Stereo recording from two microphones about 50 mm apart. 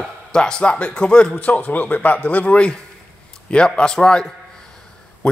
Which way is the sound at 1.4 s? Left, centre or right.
Left.